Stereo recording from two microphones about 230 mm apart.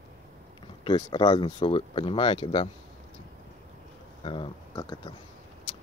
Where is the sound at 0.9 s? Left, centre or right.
Centre.